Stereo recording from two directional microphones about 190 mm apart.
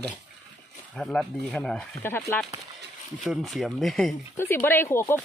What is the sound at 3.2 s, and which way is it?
Speech, centre (ahead or behind).